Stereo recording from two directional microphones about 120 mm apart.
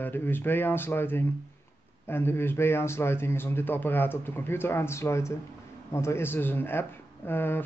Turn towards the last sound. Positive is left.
turn(degrees=20)  # may be behind; listen again after turning